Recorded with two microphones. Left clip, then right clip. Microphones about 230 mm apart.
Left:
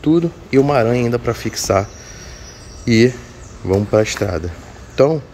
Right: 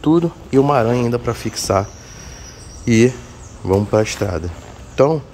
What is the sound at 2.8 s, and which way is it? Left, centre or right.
A man's voice, centre.